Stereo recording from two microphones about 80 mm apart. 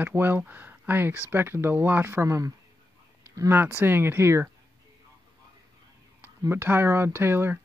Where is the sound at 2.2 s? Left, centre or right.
Right.